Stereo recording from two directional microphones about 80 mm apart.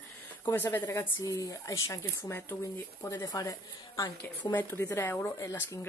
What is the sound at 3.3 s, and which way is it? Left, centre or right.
Speech, left.